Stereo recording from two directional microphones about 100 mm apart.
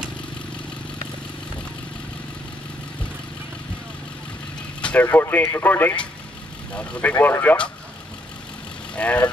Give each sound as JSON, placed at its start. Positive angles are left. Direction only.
{"t": 5.0, "sound": "speech", "side_deg": 20}
{"t": 8.9, "sound": "speech", "side_deg": 15}